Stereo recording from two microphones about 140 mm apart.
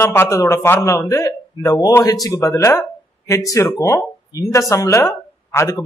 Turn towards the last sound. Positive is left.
turn(degrees=20)  # may be behind; listen again after turning